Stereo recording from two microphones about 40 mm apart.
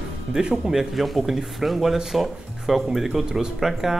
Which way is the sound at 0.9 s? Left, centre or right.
Centre.